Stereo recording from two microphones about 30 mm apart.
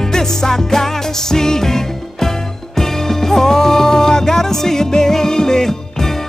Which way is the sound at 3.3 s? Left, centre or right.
Centre.